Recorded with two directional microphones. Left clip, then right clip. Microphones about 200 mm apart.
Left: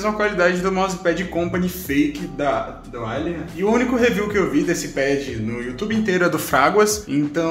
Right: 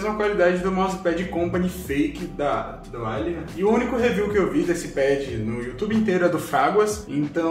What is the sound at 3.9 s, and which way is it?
A man's voice, 35° left (ahead or behind).